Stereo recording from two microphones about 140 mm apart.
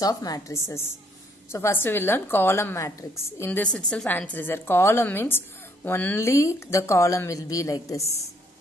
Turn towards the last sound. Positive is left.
turn(degrees=25)  # may be behind; listen again after turning